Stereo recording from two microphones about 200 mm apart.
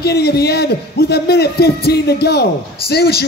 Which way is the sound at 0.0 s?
55° left (ahead or behind).